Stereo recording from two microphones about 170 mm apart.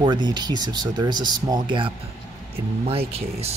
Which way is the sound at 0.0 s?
25° right (ahead or behind).